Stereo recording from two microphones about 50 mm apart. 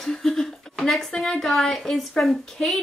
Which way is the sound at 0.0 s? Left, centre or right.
Centre.